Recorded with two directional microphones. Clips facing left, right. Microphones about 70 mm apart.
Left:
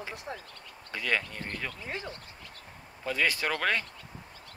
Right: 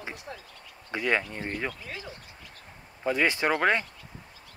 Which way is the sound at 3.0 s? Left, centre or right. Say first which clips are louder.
Right 4 dB; right.